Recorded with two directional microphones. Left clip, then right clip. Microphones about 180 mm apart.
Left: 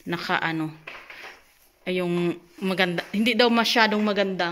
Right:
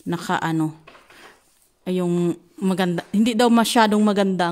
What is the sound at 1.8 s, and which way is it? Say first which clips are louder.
Speech: right 2 dB; 45° right (ahead or behind).